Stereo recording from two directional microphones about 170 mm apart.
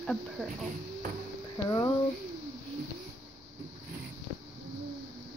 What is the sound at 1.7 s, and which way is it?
Speech, 25° left (ahead or behind).